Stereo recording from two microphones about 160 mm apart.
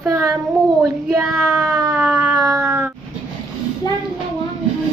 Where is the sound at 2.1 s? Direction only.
20° right (ahead or behind).